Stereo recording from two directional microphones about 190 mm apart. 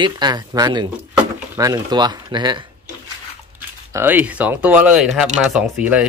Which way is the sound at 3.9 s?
10° right (ahead or behind).